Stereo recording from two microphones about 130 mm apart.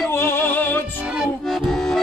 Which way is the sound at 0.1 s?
20° left (ahead or behind).